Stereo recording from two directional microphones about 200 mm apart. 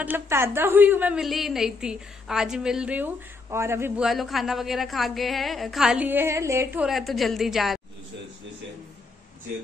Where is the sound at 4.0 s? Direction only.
Centre (ahead or behind).